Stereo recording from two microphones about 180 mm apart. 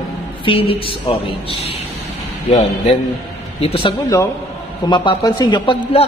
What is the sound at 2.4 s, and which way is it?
A man's voice, 35° left (ahead or behind).